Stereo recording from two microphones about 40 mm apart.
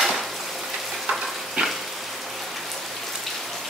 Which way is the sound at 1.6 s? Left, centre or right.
Right.